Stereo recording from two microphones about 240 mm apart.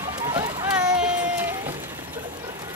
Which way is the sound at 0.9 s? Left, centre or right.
Centre.